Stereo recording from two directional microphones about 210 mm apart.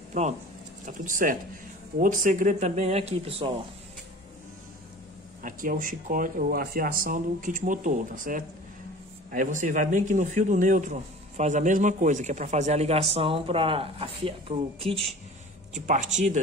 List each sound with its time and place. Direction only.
0.8 s speech: 40° right (ahead or behind)
5.4 s speech: 40° right (ahead or behind)